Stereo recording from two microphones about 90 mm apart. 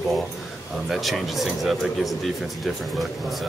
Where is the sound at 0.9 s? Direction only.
Centre (ahead or behind).